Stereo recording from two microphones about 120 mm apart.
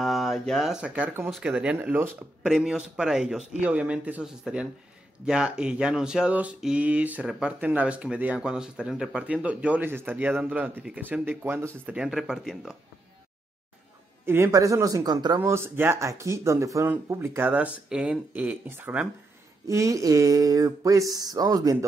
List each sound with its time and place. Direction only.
0.0 s speech: centre (ahead or behind); by 2.1 s 20° right (ahead or behind)
2.4 s speech: 5° right (ahead or behind)
11.9 s speech: 5° right (ahead or behind)
14.2 s speech: 20° right (ahead or behind)
15.4 s speech: 20° right (ahead or behind)
19.7 s speech: 25° right (ahead or behind)